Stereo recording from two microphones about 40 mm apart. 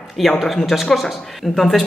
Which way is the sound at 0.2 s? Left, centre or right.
Centre.